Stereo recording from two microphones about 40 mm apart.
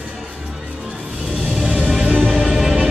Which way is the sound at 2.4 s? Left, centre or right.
Centre.